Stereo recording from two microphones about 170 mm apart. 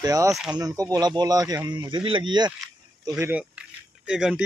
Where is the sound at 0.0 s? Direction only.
20° right (ahead or behind).